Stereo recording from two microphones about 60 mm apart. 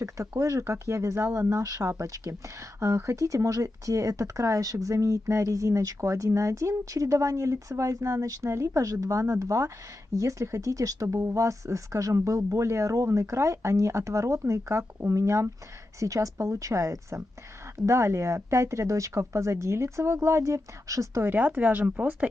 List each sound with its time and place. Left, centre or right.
0.4 s speech: right
21.3 s speech: right